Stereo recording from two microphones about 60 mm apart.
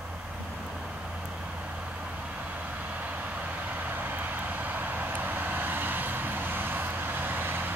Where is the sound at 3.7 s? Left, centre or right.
Right.